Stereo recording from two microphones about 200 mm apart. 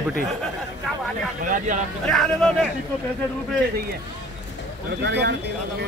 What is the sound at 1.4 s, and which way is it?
Speech, 40° right (ahead or behind).